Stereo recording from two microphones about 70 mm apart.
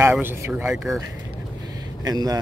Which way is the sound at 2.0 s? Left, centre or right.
Right.